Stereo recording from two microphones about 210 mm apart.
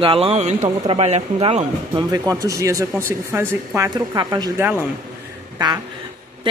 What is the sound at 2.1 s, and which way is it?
Speech, 15° right (ahead or behind).